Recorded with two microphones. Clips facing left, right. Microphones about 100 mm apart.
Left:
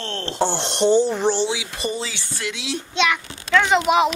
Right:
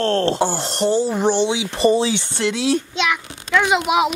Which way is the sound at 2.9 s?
5° right (ahead or behind).